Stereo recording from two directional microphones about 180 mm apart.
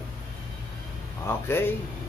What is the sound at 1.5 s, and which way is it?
Speech, 10° left (ahead or behind).